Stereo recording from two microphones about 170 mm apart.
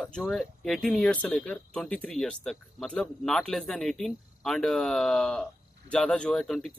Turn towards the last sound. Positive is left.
turn(degrees=0)  # may be behind; listen again after turning